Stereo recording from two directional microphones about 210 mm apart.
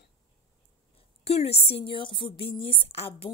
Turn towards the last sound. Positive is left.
turn(degrees=25)  # may be behind; listen again after turning